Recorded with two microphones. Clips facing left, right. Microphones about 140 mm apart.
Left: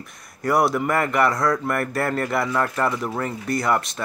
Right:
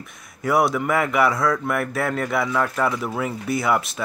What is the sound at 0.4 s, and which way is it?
Speech, centre (ahead or behind).